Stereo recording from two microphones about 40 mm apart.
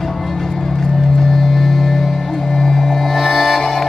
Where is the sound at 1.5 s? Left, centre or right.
Centre.